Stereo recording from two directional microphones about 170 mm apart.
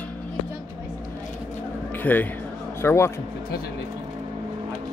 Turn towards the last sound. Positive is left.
turn(degrees=15)  # may be behind; listen again after turning